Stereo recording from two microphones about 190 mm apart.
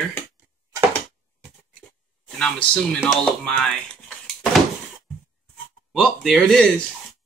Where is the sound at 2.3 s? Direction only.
5° left (ahead or behind).